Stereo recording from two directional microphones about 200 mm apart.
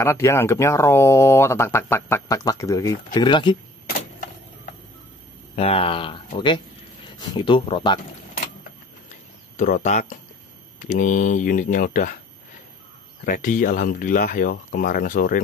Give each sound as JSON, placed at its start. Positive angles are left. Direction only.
{"t": 0.0, "sound": "speech", "side_deg": 15}
{"t": 5.6, "sound": "speech", "side_deg": 30}
{"t": 9.1, "sound": "a sound", "side_deg": 40}
{"t": 10.8, "sound": "speech", "side_deg": 40}
{"t": 13.2, "sound": "speech", "side_deg": 40}